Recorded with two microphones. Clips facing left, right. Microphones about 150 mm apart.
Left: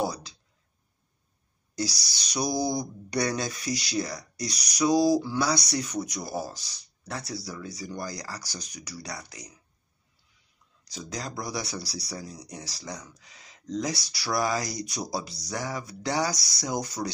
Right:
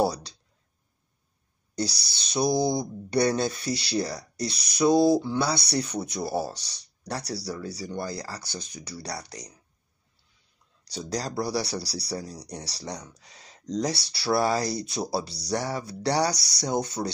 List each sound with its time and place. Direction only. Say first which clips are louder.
0.0 s speech: right 5 dB; 35° right (ahead or behind)
1.8 s speech: right 1 dB; 30° right (ahead or behind)
10.9 s speech: right 5 dB; 35° right (ahead or behind)